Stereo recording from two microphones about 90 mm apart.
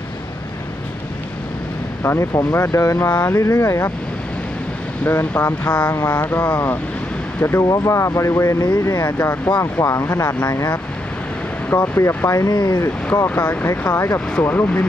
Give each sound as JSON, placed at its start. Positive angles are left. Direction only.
{"t": 2.0, "sound": "speech", "side_deg": 30}
{"t": 3.1, "sound": "speech", "side_deg": 15}
{"t": 3.3, "sound": "speech", "side_deg": 35}
{"t": 5.0, "sound": "speech", "side_deg": 15}
{"t": 8.6, "sound": "speech", "side_deg": 50}
{"t": 9.0, "sound": "speech", "side_deg": 25}
{"t": 12.4, "sound": "speech", "side_deg": 45}
{"t": 12.8, "sound": "speech", "side_deg": 25}